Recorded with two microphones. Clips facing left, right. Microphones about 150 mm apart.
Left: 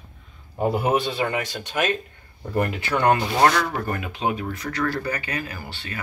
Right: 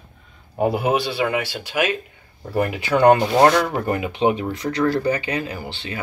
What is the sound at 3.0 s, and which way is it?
Speech, 25° right (ahead or behind).